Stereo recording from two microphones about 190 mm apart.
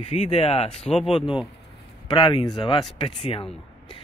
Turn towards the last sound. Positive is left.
turn(degrees=30)  # may be behind; listen again after turning